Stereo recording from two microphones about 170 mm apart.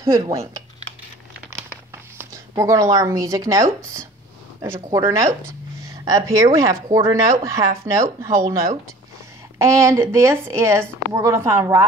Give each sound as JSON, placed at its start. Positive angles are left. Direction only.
{"t": 0.1, "sound": "speech", "side_deg": -20}
{"t": 2.1, "sound": "speech", "side_deg": -20}
{"t": 9.6, "sound": "speech", "side_deg": -15}